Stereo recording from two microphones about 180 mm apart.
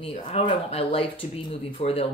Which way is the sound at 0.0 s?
35° left (ahead or behind).